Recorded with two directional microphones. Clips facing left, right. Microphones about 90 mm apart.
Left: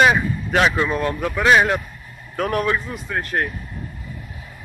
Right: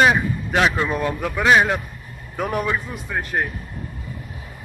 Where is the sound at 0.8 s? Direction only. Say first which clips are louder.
Left 1 dB; 15° right (ahead or behind).